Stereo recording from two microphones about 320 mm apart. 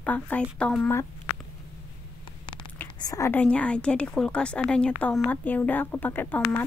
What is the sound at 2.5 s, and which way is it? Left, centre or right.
A woman's voice, centre.